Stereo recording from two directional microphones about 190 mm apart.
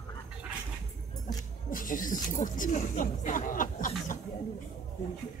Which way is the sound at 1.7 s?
45° left (ahead or behind).